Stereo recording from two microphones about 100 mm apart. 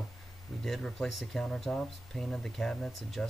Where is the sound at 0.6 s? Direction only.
5° left (ahead or behind).